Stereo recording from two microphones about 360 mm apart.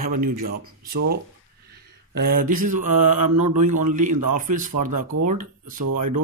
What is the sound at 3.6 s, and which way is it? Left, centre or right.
Speech, right.